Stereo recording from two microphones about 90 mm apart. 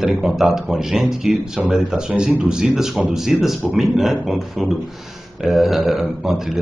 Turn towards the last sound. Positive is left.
turn(degrees=-5)  # may be behind; listen again after turning